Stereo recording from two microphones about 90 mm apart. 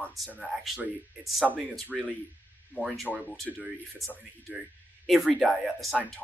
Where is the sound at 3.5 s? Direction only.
Centre (ahead or behind).